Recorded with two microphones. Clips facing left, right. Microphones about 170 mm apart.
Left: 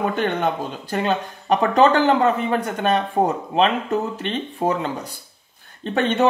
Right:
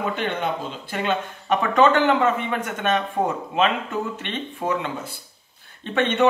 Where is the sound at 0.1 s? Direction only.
45° left (ahead or behind).